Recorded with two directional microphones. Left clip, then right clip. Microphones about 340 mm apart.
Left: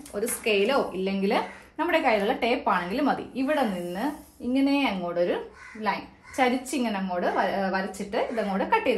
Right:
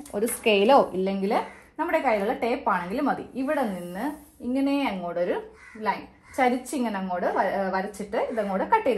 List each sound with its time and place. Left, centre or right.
0.1 s a woman's voice: right
0.5 s a woman's voice: centre